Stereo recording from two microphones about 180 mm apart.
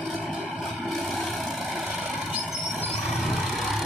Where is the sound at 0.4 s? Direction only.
Centre (ahead or behind).